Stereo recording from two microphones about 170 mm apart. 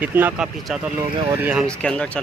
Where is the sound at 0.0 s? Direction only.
10° right (ahead or behind).